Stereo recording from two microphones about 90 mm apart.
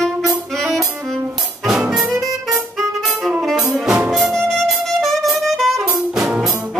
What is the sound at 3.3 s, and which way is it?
Music, 5° right (ahead or behind).